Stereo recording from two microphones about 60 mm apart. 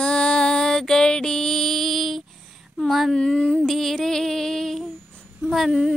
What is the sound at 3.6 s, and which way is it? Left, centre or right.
Female singing, centre.